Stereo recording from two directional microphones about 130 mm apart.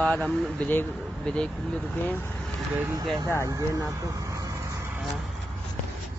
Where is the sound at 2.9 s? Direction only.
35° right (ahead or behind).